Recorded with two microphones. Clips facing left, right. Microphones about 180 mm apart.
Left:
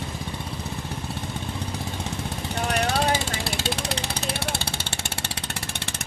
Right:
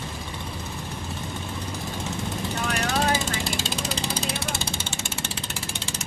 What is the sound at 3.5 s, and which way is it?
Vehicle, 65° left (ahead or behind).